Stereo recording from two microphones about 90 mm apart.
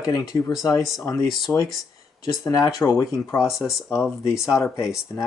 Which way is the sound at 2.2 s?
40° left (ahead or behind).